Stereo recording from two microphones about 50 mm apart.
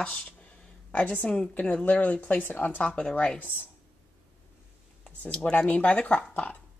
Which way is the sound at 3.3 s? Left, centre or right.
Left.